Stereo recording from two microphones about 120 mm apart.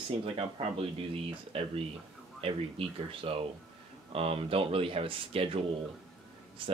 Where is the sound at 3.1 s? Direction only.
50° right (ahead or behind).